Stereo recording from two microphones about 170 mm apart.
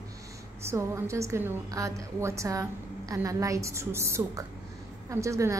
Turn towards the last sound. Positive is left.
turn(degrees=-20)  # may be behind; listen again after turning